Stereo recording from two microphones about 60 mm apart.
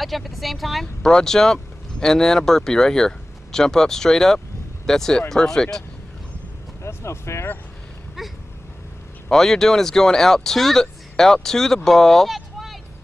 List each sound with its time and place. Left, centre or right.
0.0 s speech: centre
6.8 s vehicle: left
8.2 s a sound: centre
9.3 s speech: centre